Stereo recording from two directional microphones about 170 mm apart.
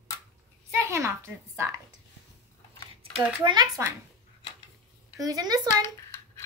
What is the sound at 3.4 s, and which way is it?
Speech, 25° right (ahead or behind).